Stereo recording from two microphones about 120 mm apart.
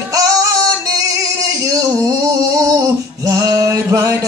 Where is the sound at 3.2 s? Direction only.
30° right (ahead or behind).